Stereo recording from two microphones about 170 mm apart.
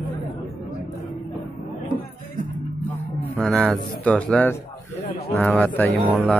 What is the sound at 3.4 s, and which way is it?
Speech, 5° left (ahead or behind).